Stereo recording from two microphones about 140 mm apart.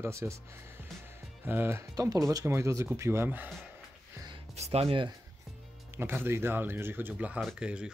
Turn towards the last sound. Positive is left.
turn(degrees=-5)  # may be behind; listen again after turning